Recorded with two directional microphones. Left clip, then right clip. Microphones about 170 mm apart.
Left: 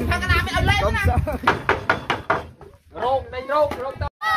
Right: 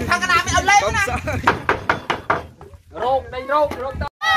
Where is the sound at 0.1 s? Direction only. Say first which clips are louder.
Right 6 dB; 40° right (ahead or behind).